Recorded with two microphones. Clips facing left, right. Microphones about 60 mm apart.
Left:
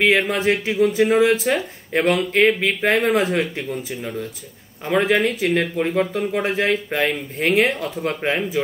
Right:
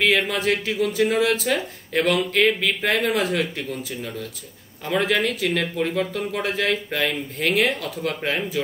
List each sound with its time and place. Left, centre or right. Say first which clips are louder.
0.3 s speech: left 3 dB; left